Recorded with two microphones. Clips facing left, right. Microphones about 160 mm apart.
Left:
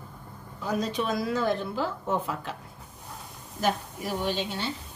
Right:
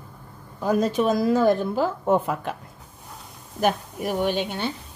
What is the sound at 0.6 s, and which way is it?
A woman's voice, 50° right (ahead or behind).